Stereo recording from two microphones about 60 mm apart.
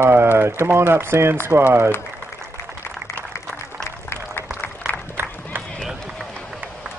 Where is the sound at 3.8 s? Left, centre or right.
Left.